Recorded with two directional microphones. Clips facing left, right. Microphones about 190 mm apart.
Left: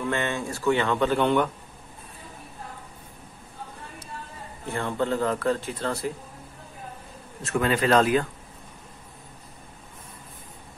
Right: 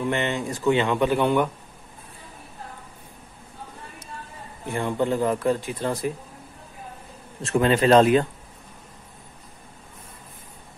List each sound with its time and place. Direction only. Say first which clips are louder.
0.0 s a man's voice: right 2 dB; 20° right (ahead or behind)
4.6 s a man's voice: right 3 dB; 15° right (ahead or behind)
7.4 s speech: right 4 dB; 25° right (ahead or behind)